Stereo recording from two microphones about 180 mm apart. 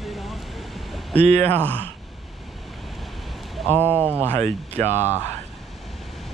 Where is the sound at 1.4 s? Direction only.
10° left (ahead or behind).